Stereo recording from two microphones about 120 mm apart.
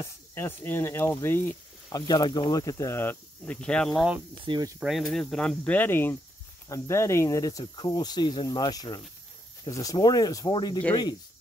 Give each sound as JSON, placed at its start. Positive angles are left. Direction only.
{"t": 0.0, "sound": "speech", "side_deg": 20}
{"t": 1.9, "sound": "speech", "side_deg": 35}
{"t": 3.6, "sound": "speech", "side_deg": 10}
{"t": 4.5, "sound": "speech", "side_deg": -35}
{"t": 4.7, "sound": "speech", "side_deg": -5}